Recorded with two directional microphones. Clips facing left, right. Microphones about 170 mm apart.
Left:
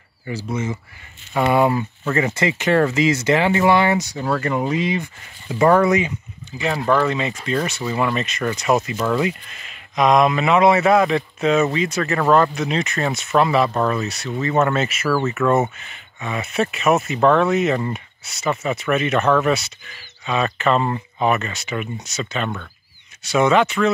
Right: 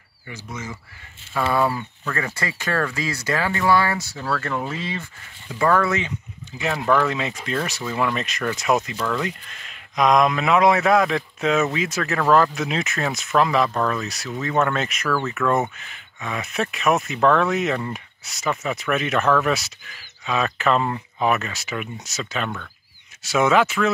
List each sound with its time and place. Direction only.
0.3 s speech: 30° left (ahead or behind); by 6.1 s 15° left (ahead or behind)
6.6 s speech: centre (ahead or behind)